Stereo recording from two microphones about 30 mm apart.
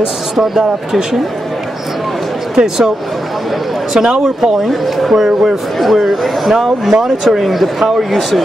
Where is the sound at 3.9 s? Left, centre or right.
Centre.